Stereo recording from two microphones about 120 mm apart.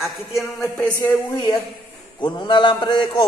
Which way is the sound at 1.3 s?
40° left (ahead or behind).